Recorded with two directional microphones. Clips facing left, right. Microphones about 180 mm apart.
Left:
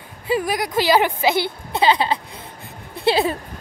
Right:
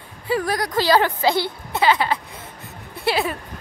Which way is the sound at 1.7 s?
25° left (ahead or behind).